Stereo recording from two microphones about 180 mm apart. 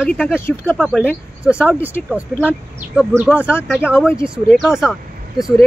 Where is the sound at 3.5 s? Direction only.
10° left (ahead or behind).